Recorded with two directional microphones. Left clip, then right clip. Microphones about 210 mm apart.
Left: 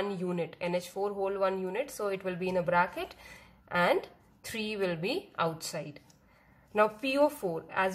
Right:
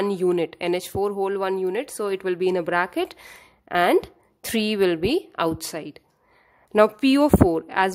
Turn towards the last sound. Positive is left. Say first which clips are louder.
# right 11 dB
turn(degrees=-55)  # may be behind; listen again after turning